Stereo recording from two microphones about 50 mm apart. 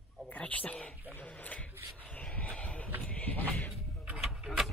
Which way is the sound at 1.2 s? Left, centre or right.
Left.